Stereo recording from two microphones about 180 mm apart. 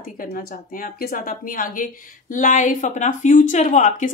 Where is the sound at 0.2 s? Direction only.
55° left (ahead or behind).